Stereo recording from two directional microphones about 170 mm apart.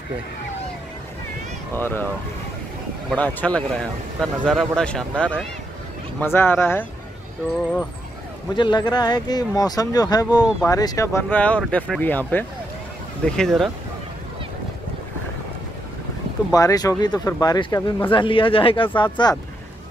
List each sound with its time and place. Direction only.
1.8 s speech: 10° left (ahead or behind)
3.2 s speech: 10° left (ahead or behind)
8.5 s speech: 25° left (ahead or behind); by 13.7 s centre (ahead or behind)
16.5 s speech: 20° left (ahead or behind)